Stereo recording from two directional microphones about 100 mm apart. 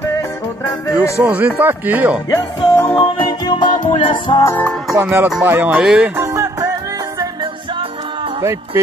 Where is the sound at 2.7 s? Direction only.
25° left (ahead or behind).